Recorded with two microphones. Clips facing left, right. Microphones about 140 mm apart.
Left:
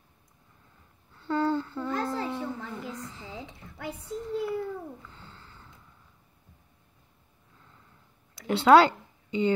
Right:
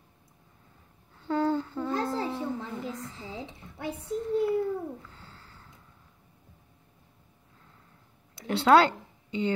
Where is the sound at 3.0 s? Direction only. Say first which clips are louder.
Right 1 dB; 20° right (ahead or behind).